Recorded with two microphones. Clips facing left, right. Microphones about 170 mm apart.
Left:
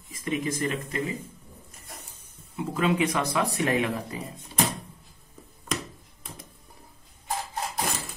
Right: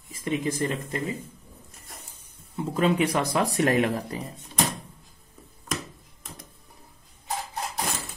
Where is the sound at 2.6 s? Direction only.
30° right (ahead or behind).